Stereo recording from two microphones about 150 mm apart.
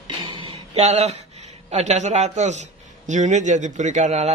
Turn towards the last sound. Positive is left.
turn(degrees=-50)  # may be behind; listen again after turning